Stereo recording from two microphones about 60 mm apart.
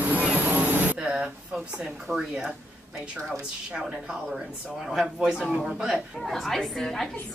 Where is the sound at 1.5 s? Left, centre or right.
Centre.